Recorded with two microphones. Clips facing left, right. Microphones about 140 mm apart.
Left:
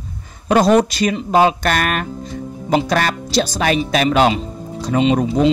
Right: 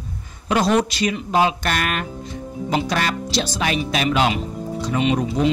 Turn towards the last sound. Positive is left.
turn(degrees=25)  # may be behind; listen again after turning